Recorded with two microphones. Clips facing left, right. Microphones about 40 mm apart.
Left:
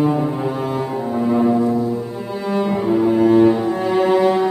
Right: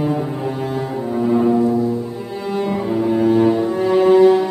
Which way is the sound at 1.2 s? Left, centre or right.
Centre.